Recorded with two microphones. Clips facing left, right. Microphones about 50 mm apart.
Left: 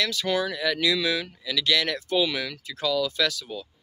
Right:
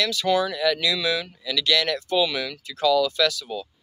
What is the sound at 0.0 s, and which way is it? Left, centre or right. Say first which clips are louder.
Speech: right 4 dB; left.